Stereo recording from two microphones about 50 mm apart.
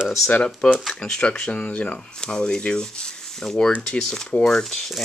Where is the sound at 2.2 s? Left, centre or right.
Centre.